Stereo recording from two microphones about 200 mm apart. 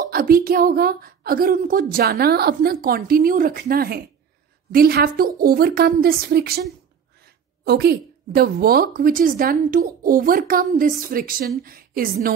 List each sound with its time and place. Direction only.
0.0 s a woman's voice: 45° right (ahead or behind)
7.6 s a woman's voice: 50° right (ahead or behind)